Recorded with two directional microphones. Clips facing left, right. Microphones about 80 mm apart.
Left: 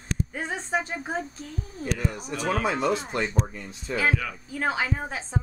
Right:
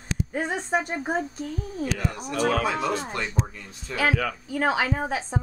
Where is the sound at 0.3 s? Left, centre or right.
Right.